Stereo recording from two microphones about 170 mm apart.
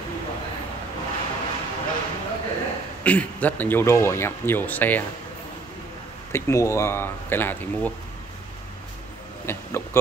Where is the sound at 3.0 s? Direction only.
10° left (ahead or behind).